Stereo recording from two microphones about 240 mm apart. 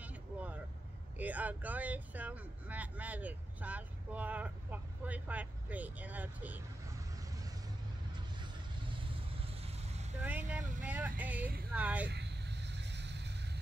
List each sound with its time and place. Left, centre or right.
0.0 s vehicle: centre
1.1 s speech: centre
9.6 s vehicle: right
10.2 s speech: centre
12.1 s vehicle: right